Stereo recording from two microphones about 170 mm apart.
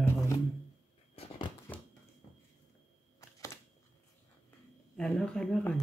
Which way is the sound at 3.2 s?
20° left (ahead or behind).